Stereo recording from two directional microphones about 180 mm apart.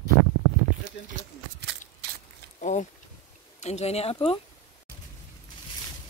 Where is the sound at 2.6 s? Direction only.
40° left (ahead or behind).